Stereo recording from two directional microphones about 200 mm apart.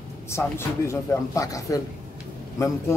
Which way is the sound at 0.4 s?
15° left (ahead or behind).